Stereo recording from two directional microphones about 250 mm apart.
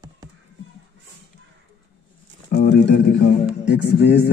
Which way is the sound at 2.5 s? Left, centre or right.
Left.